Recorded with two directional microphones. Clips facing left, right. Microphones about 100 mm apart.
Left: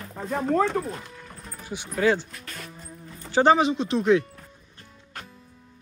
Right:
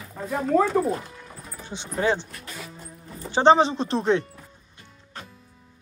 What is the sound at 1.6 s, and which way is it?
Speech, 25° right (ahead or behind).